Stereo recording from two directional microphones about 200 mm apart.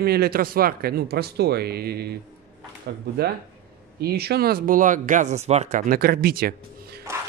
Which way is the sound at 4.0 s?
50° right (ahead or behind).